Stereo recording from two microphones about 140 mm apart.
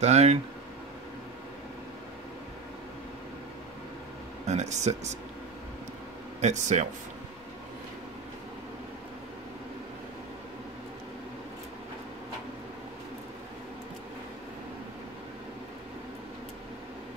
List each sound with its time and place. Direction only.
0.0 s speech: 50° right (ahead or behind)
4.5 s speech: 55° right (ahead or behind)
6.4 s speech: 55° right (ahead or behind)